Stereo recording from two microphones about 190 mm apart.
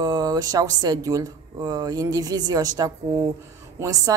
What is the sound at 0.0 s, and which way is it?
Speech, 20° right (ahead or behind).